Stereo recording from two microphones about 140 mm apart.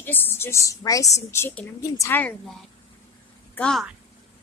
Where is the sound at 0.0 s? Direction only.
15° left (ahead or behind).